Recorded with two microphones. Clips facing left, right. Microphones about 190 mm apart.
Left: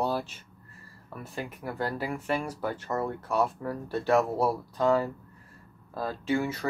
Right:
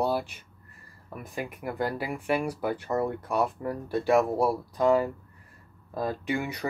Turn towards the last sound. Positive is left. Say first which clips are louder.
# left 2 dB
turn(degrees=-15)  # may be behind; listen again after turning